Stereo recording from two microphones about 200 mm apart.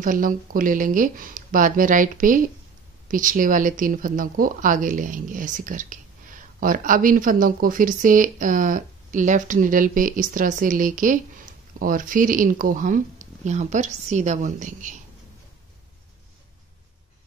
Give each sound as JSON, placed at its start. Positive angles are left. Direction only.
{"t": 0.0, "sound": "a woman's voice", "side_deg": -40}